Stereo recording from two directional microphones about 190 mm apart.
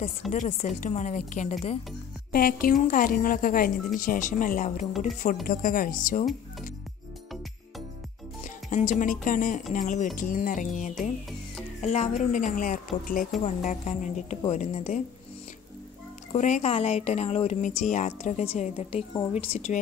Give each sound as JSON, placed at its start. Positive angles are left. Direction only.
{"t": 0.3, "sound": "speech", "side_deg": 35}
{"t": 2.3, "sound": "a woman's voice", "side_deg": 50}
{"t": 8.6, "sound": "a woman's voice", "side_deg": 40}
{"t": 16.3, "sound": "speech", "side_deg": 40}